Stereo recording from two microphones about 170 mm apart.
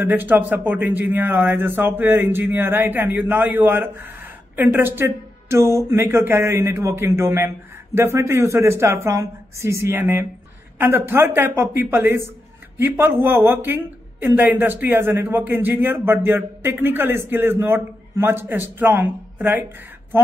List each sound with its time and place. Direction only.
0.0 s a woman's voice: 10° right (ahead or behind)